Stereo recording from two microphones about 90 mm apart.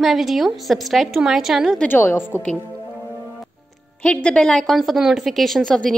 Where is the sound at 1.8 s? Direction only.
20° left (ahead or behind).